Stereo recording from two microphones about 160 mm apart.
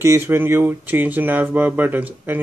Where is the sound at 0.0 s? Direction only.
15° right (ahead or behind).